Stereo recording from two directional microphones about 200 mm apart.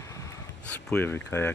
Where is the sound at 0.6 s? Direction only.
10° left (ahead or behind).